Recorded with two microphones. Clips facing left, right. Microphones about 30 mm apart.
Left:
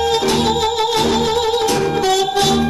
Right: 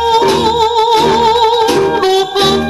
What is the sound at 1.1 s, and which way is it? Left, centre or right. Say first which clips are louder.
Music: right 7 dB; right.